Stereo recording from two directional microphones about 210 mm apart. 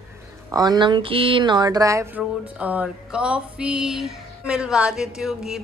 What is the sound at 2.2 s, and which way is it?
Music, 5° right (ahead or behind).